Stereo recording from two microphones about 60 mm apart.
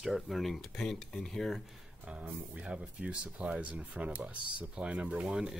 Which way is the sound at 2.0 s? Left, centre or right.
Centre.